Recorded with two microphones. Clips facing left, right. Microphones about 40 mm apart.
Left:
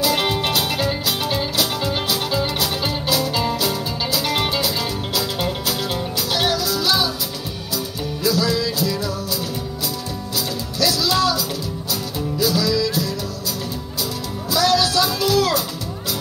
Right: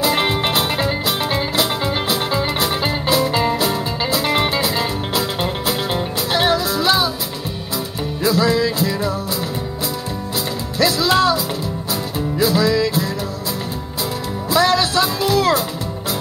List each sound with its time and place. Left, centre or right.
0.0 s music: right
8.2 s music: right
10.8 s music: right
14.5 s music: right